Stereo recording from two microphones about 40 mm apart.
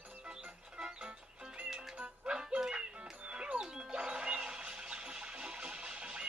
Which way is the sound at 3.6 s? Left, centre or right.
Centre.